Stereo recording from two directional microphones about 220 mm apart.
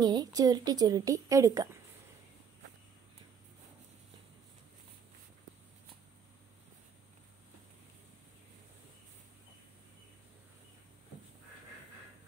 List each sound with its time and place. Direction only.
0.0 s a woman's voice: 15° right (ahead or behind)